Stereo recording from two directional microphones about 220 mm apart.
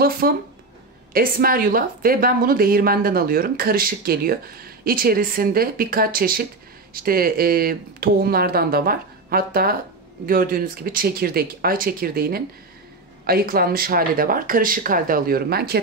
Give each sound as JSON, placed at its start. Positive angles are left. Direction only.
{"t": 0.2, "sound": "a woman's voice", "side_deg": -45}